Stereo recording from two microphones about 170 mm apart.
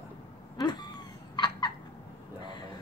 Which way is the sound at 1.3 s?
25° left (ahead or behind).